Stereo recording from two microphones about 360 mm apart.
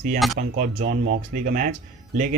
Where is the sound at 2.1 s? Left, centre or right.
Right.